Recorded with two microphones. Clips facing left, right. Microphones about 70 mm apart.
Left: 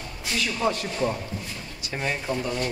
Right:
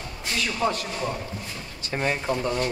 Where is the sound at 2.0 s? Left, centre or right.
Right.